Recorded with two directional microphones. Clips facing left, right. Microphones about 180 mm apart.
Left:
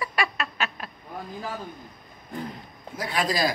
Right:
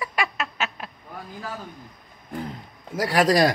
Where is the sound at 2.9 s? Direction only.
85° right.